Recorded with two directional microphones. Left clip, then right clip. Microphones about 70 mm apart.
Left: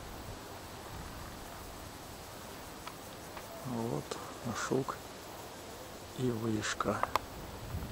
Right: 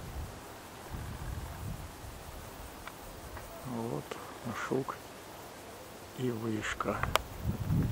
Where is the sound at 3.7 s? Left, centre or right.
Centre.